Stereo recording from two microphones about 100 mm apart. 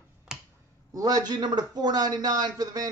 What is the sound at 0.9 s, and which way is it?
A man's voice, 40° right (ahead or behind).